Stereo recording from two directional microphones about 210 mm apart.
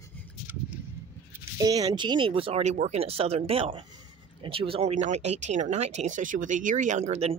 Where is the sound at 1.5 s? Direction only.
15° right (ahead or behind).